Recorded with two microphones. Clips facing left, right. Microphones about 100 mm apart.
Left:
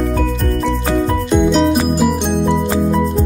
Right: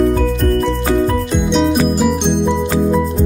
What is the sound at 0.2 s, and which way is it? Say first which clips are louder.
Music: right 3 dB; centre (ahead or behind).